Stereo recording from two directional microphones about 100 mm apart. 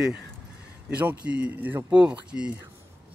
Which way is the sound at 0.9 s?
15° right (ahead or behind).